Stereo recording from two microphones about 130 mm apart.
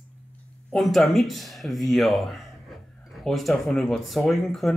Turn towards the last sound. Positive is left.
turn(degrees=0)  # may be behind; listen again after turning